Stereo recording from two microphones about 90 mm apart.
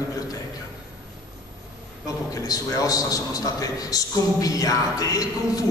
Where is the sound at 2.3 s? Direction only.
40° left (ahead or behind).